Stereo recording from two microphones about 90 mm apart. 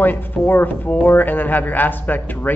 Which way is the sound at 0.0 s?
20° left (ahead or behind).